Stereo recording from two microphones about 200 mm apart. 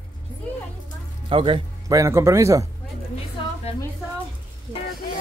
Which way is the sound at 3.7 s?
30° left (ahead or behind).